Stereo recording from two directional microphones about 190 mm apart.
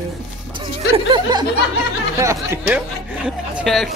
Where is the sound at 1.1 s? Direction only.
20° right (ahead or behind).